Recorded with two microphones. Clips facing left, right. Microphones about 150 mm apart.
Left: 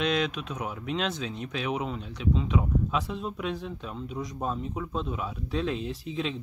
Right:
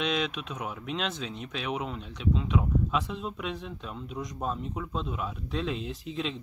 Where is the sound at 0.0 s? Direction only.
Centre (ahead or behind).